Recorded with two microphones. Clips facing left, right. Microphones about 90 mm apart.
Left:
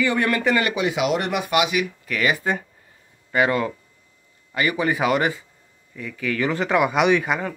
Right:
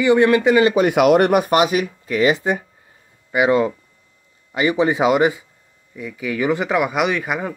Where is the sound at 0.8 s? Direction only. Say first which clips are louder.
Right 9 dB; 55° right (ahead or behind).